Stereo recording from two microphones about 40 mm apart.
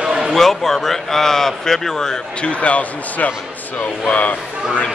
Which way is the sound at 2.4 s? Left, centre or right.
Left.